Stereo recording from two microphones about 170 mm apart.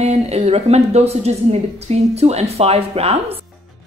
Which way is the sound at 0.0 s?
40° right (ahead or behind).